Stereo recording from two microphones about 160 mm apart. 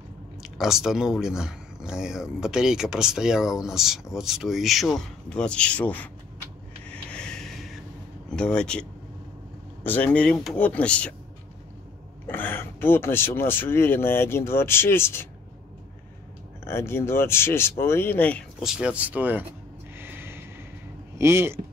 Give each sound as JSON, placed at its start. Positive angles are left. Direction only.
{"t": 0.4, "sound": "speech", "side_deg": -5}
{"t": 6.9, "sound": "a sound", "side_deg": 5}
{"t": 8.3, "sound": "speech", "side_deg": 5}
{"t": 9.8, "sound": "speech", "side_deg": 10}
{"t": 12.3, "sound": "speech", "side_deg": 10}
{"t": 16.6, "sound": "speech", "side_deg": 15}
{"t": 18.6, "sound": "speech", "side_deg": -5}
{"t": 20.0, "sound": "a sound", "side_deg": -15}
{"t": 21.2, "sound": "speech", "side_deg": -15}